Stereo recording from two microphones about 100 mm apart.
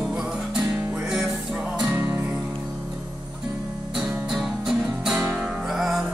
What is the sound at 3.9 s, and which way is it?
Music, 5° right (ahead or behind).